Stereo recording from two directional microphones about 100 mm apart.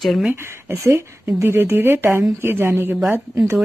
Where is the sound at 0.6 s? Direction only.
25° right (ahead or behind).